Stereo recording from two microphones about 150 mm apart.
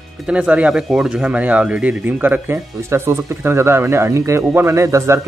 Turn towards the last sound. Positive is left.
turn(degrees=-20)  # may be behind; listen again after turning